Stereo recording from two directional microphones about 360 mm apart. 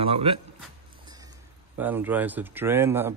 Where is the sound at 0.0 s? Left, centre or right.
Centre.